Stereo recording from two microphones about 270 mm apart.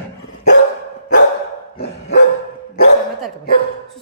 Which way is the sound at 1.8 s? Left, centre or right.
Left.